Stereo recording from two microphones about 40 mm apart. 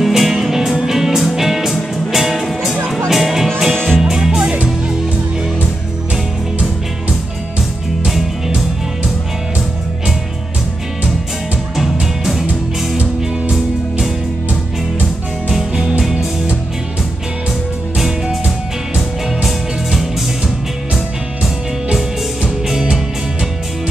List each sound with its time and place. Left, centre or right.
0.0 s music: centre
3.7 s music: centre
4.0 s music: centre
11.7 s music: centre
15.7 s music: right
16.0 s music: centre
17.9 s music: centre